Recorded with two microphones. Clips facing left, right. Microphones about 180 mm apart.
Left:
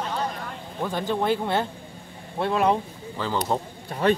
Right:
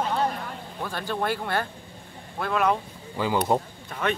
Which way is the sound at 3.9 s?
35° left (ahead or behind).